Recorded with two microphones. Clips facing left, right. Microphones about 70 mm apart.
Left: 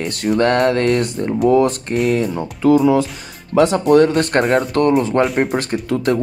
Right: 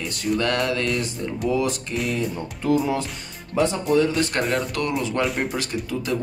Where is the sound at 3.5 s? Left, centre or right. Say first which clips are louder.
Left 8 dB; left.